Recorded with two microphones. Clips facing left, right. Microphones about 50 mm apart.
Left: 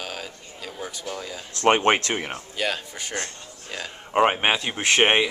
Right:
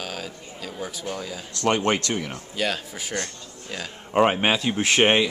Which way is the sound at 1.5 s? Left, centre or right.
Left.